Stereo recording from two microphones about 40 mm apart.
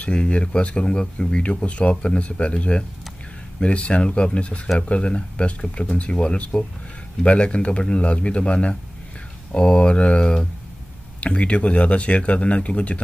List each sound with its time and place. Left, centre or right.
0.0 s speech: left